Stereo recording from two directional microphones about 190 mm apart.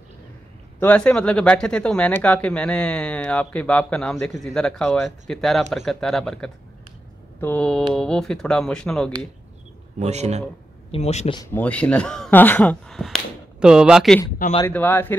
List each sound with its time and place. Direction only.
0.7 s speech: 10° left (ahead or behind)
9.9 s speech: 35° right (ahead or behind)
10.9 s speech: 35° left (ahead or behind)
11.5 s speech: 5° left (ahead or behind)
14.7 s speech: 10° left (ahead or behind)